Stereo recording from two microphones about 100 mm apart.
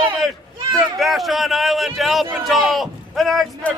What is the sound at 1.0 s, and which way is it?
A man's voice, centre (ahead or behind).